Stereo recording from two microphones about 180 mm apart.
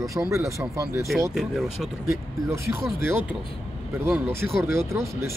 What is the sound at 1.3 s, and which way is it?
Speech, centre (ahead or behind).